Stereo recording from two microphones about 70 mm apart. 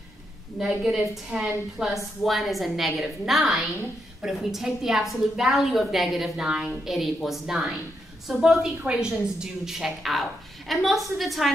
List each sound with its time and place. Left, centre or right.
0.6 s a woman's voice: centre